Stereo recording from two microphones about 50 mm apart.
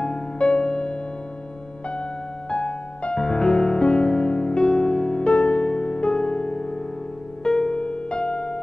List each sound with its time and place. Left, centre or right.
0.0 s music: centre
3.2 s music: centre